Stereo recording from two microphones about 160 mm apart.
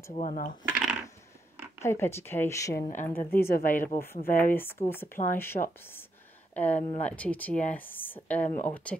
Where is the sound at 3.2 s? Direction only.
65° left (ahead or behind).